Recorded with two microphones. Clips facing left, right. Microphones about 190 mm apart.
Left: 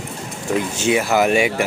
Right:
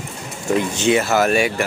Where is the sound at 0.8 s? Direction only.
10° left (ahead or behind).